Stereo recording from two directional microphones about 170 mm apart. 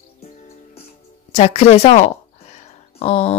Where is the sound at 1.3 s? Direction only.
40° left (ahead or behind).